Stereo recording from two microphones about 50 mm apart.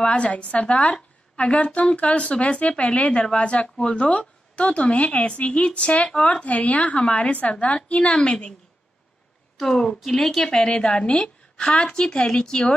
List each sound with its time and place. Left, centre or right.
0.0 s a woman's voice: left
9.6 s a woman's voice: centre